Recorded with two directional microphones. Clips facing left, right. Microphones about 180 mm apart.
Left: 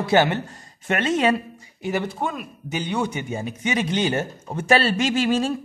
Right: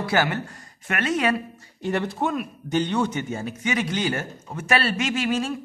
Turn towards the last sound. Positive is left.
turn(degrees=30)  # may be behind; listen again after turning